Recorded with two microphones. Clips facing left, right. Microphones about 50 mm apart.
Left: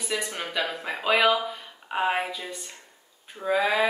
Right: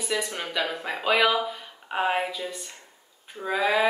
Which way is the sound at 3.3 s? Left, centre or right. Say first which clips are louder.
Even; centre.